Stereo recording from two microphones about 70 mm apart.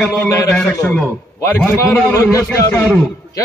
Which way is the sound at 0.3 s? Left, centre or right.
Left.